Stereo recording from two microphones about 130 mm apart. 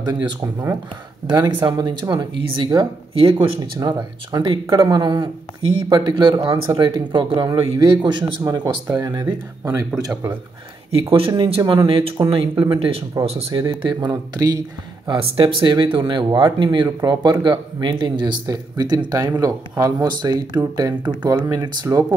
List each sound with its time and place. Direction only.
1.2 s speech: 35° right (ahead or behind)
11.0 s speech: 45° right (ahead or behind)
15.0 s speech: 45° right (ahead or behind); by 22.0 s 25° right (ahead or behind)